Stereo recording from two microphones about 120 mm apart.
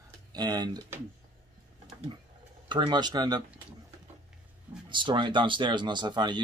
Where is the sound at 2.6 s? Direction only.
40° right (ahead or behind).